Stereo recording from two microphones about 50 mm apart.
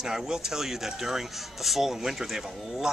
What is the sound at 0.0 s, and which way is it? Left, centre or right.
Speech, centre.